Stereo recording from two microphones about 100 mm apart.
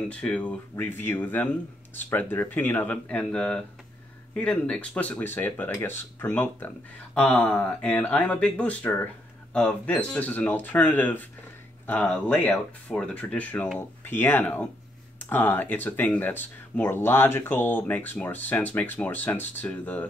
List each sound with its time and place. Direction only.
0.1 s speech: 10° left (ahead or behind)